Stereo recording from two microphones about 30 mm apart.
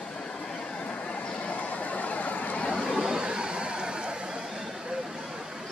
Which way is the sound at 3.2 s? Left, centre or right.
Right.